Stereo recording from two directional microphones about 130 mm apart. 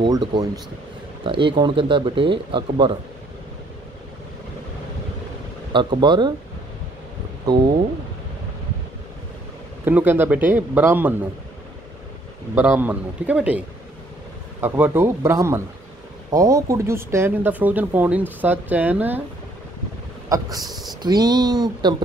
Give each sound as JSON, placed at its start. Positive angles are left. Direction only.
{"t": 0.0, "sound": "speech", "side_deg": -35}
{"t": 5.7, "sound": "speech", "side_deg": -40}
{"t": 9.8, "sound": "speech", "side_deg": -15}
{"t": 12.7, "sound": "speech", "side_deg": -10}
{"t": 20.2, "sound": "speech", "side_deg": -30}
{"t": 20.6, "sound": "speech", "side_deg": 0}
{"t": 21.0, "sound": "speech", "side_deg": -30}